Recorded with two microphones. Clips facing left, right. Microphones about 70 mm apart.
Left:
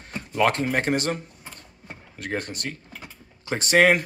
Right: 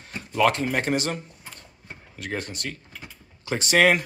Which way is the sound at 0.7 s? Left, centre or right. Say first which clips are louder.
Left 1 dB; left.